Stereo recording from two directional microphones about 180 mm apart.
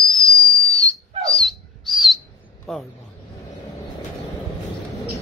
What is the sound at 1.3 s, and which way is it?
Bird, centre (ahead or behind).